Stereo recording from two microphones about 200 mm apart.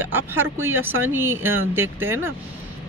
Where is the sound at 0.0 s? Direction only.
10° right (ahead or behind).